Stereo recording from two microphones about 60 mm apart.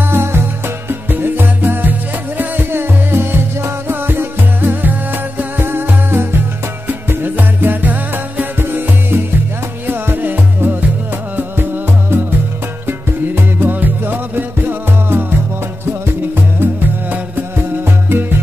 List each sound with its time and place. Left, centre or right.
0.0 s music: right
12.8 s music: right
16.5 s music: right